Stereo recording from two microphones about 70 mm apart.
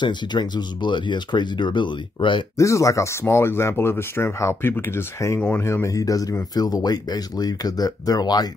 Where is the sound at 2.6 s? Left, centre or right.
Left.